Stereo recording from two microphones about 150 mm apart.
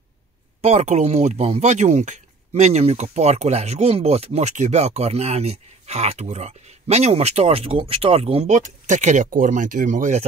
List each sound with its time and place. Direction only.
0.6 s speech: 50° right (ahead or behind)